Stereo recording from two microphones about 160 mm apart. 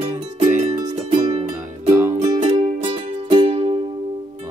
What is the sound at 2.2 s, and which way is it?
Music, 25° right (ahead or behind).